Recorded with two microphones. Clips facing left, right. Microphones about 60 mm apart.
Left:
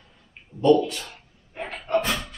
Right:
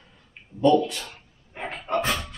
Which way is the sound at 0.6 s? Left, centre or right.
Centre.